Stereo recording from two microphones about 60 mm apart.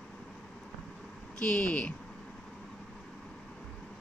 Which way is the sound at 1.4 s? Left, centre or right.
Left.